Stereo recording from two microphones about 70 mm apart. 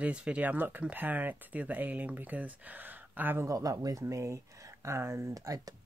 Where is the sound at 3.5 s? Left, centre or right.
Right.